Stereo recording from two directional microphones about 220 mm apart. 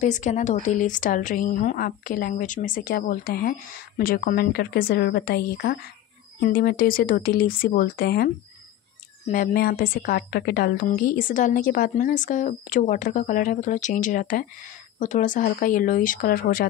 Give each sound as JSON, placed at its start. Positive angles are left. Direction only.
{"t": 0.0, "sound": "speech", "side_deg": 35}
{"t": 9.3, "sound": "speech", "side_deg": 40}